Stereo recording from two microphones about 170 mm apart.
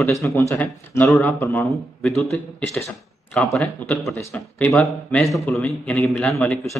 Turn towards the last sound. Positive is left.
turn(degrees=10)  # may be behind; listen again after turning